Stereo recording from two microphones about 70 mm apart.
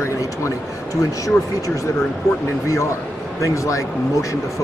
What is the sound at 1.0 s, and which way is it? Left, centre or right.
Speech, left.